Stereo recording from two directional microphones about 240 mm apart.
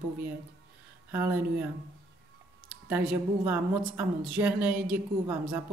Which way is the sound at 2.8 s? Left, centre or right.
Centre.